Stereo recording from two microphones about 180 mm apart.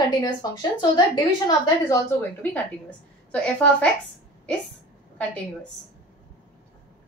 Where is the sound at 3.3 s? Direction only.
5° left (ahead or behind).